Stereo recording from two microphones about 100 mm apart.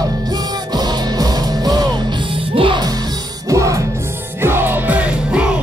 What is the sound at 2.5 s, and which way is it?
Music, 60° right (ahead or behind).